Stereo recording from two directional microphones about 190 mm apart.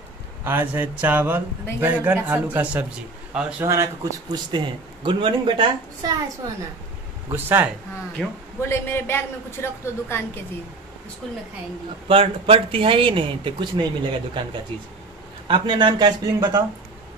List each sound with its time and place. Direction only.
0.4 s a man's voice: 10° right (ahead or behind)
3.6 s a man's voice: 15° right (ahead or behind)
7.3 s a man's voice: 10° right (ahead or behind)
8.2 s speech: 5° left (ahead or behind)
12.1 s a man's voice: 30° right (ahead or behind)
15.4 s a man's voice: 25° right (ahead or behind)